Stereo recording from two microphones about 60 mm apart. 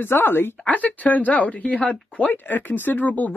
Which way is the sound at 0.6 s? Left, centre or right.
Left.